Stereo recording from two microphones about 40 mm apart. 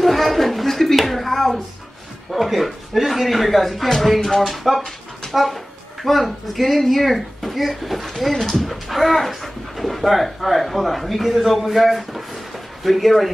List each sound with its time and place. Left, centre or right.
0.0 s a sound: centre
2.3 s speech: centre
4.2 s speech: centre
4.5 s speech: centre